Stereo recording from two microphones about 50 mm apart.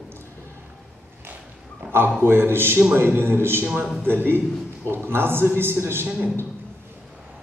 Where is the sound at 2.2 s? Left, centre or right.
Right.